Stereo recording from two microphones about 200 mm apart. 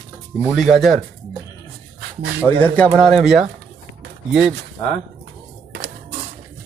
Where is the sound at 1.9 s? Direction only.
50° right (ahead or behind).